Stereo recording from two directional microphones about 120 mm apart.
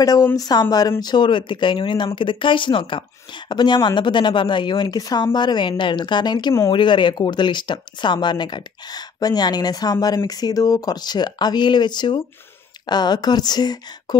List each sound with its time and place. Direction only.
0.4 s speech: 35° left (ahead or behind)